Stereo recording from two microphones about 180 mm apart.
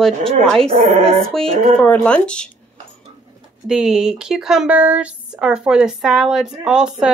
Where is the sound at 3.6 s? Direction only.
5° right (ahead or behind).